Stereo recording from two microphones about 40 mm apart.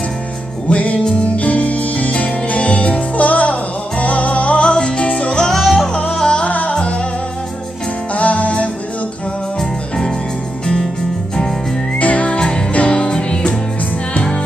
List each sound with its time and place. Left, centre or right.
0.7 s music: left
5.5 s music: centre
6.1 s music: centre
6.4 s music: left
8.1 s music: left
9.6 s music: centre
12.0 s music: left